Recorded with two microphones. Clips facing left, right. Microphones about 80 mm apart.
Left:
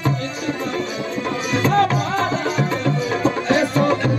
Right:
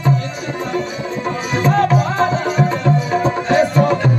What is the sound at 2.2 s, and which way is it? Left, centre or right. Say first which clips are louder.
Music: right 4 dB; right.